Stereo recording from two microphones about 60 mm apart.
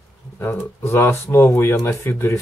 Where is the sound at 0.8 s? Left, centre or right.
Left.